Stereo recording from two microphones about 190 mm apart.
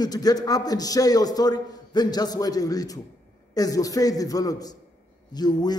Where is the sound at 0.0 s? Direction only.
20° left (ahead or behind).